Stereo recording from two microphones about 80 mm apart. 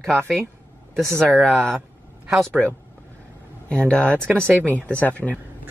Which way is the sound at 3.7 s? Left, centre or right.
Centre.